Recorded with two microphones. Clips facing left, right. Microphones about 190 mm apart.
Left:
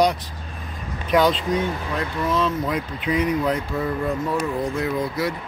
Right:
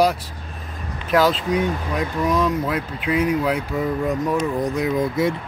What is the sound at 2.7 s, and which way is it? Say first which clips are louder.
Speech: right 1 dB; 5° right (ahead or behind).